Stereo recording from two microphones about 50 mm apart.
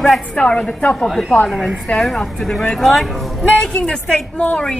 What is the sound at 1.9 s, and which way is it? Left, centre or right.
Speech, left.